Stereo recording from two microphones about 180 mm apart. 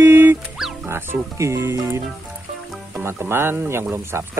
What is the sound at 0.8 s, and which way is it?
Speech, 10° right (ahead or behind).